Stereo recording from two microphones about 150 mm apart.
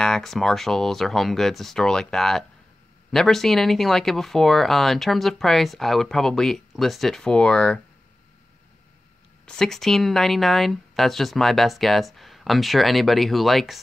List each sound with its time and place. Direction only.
0.0 s speech: 5° left (ahead or behind)
9.5 s speech: 5° left (ahead or behind)